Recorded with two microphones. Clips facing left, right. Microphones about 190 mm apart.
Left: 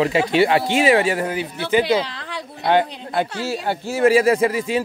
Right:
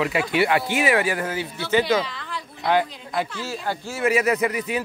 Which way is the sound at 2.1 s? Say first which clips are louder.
Left 2 dB; 70° left (ahead or behind).